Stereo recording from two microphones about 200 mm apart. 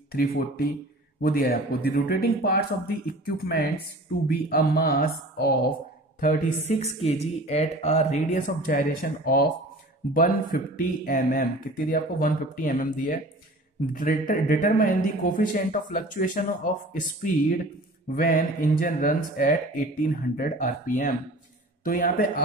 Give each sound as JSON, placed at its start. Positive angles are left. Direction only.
{"t": 0.1, "sound": "a woman's voice", "side_deg": 50}
{"t": 6.7, "sound": "speech", "side_deg": 35}